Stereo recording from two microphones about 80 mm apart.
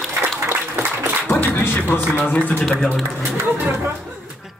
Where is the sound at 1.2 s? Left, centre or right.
Left.